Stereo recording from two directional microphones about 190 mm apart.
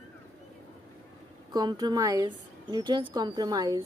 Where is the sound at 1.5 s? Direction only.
20° right (ahead or behind).